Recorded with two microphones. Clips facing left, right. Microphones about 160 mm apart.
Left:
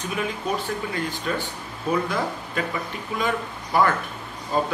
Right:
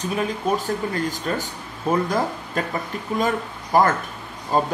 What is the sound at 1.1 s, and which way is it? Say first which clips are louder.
A man's voice: right 1 dB; 40° right (ahead or behind).